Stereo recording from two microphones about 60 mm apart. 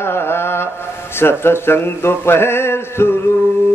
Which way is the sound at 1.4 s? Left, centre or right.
Left.